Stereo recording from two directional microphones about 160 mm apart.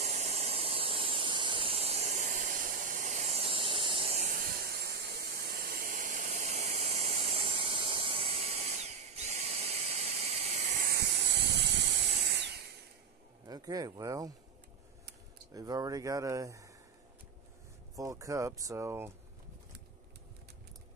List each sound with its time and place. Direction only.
0.0 s a sound: 45° right (ahead or behind)
4.3 s a sound: 70° right (ahead or behind); by 10.9 s 50° right (ahead or behind)
10.9 s hiss: 90° right
13.5 s speech: 25° right (ahead or behind)
15.5 s speech: 20° right (ahead or behind)
17.9 s speech: 20° right (ahead or behind)